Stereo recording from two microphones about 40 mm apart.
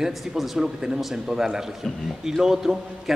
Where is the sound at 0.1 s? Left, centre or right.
Centre.